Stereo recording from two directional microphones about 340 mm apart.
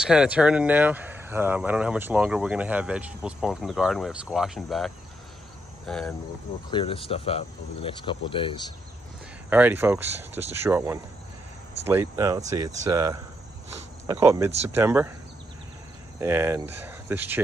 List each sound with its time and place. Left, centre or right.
0.0 s speech: centre
6.7 s speech: centre
9.5 s speech: centre
16.2 s speech: centre